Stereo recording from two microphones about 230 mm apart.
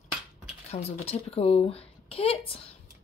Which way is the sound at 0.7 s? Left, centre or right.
Left.